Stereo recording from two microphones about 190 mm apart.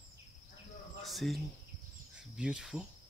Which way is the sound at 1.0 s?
Centre (ahead or behind).